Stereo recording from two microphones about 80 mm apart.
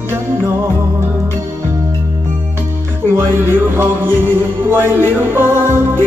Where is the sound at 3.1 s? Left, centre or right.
Right.